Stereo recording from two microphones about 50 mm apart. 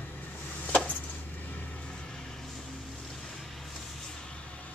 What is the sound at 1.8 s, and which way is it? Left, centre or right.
Vehicle, centre.